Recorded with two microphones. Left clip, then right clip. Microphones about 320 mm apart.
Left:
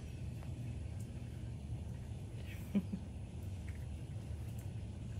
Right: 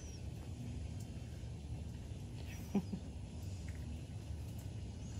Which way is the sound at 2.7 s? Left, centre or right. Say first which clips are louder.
Even; right.